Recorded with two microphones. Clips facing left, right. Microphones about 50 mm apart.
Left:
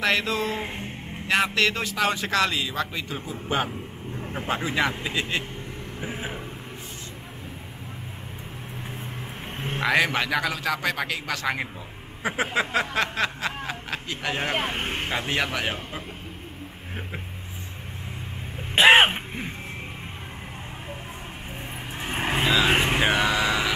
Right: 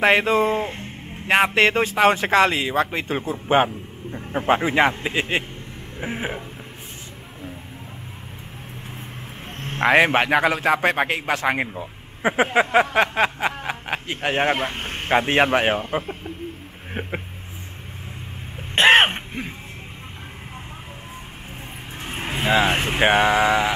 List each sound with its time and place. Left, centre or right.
0.0 s a man's voice: right
9.8 s a man's voice: right
13.7 s a sound: right
14.7 s speech: centre
15.0 s a man's voice: right
18.8 s a sound: centre
22.0 s vehicle: centre
22.9 s a man's voice: right